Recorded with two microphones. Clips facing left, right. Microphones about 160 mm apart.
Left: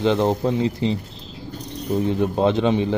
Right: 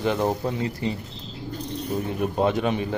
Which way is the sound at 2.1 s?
25° left (ahead or behind).